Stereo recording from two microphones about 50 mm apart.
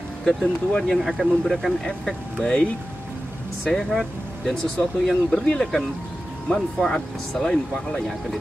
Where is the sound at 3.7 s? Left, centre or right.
Centre.